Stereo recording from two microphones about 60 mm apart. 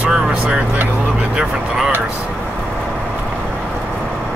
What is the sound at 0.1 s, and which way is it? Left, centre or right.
Vehicle, centre.